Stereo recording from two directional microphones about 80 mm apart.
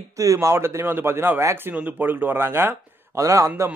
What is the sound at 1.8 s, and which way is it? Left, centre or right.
Speech, right.